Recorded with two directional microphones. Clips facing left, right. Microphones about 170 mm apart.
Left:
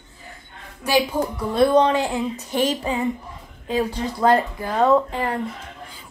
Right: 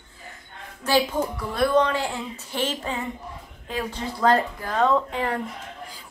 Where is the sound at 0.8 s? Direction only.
20° left (ahead or behind).